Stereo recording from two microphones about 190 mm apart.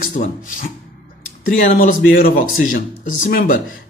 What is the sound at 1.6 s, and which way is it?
Speech, 45° left (ahead or behind).